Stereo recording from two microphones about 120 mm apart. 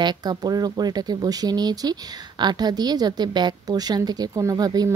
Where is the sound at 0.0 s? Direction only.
35° right (ahead or behind).